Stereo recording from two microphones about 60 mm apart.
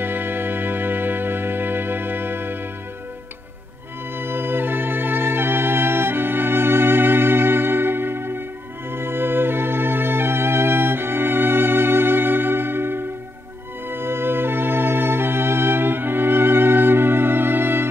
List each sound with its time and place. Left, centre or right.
0.0 s music: right
4.2 s music: right